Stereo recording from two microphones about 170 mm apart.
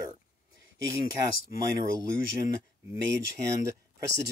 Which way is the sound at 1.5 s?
20° right (ahead or behind).